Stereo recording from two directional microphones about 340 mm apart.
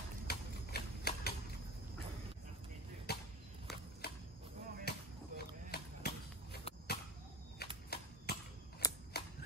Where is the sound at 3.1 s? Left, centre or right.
Left.